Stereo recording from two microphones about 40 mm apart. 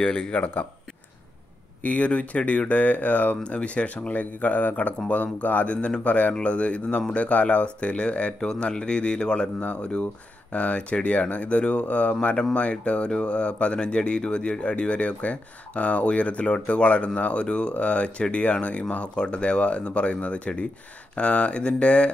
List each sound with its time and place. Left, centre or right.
0.0 s speech: centre
0.3 s speech: left
1.8 s speech: left
9.6 s speech: left